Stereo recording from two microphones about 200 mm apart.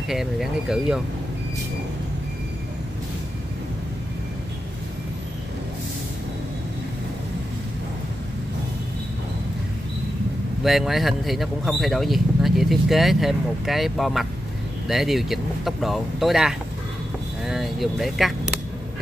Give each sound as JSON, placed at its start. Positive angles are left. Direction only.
{"t": 0.1, "sound": "speech", "side_deg": 0}
{"t": 10.6, "sound": "speech", "side_deg": 0}